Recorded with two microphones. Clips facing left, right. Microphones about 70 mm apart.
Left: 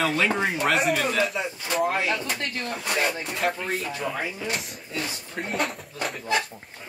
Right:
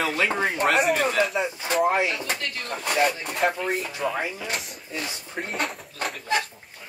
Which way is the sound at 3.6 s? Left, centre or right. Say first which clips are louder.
Right 2 dB; centre.